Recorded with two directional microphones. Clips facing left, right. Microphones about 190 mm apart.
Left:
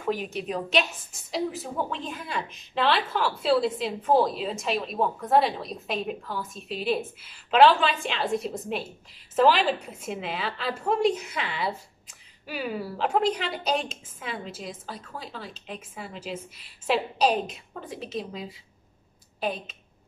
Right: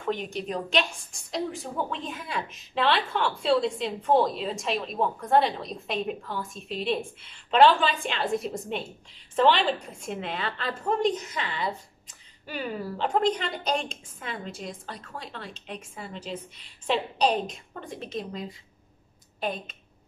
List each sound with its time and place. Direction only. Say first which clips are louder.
0.0 s a woman's voice: left 1 dB; 5° left (ahead or behind)